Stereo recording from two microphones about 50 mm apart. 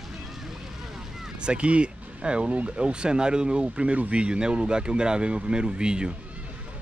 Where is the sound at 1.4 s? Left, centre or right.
Right.